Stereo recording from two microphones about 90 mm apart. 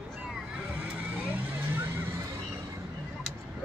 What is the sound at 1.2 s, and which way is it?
Vehicle, 20° right (ahead or behind).